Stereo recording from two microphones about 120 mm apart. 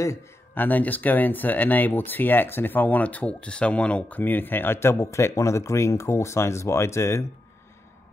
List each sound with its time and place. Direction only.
0.0 s speech: 20° left (ahead or behind)